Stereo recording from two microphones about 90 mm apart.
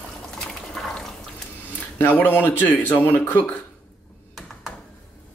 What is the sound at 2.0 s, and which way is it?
Speech, 20° left (ahead or behind).